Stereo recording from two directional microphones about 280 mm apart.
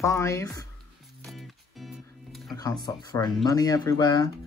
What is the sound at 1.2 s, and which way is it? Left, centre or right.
Music, centre.